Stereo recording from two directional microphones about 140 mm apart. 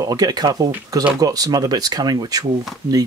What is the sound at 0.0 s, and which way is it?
Speech, 25° right (ahead or behind).